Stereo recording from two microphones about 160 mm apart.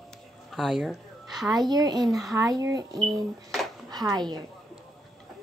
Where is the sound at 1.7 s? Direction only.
25° right (ahead or behind).